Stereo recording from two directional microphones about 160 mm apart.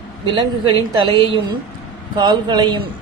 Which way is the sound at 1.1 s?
30° right (ahead or behind).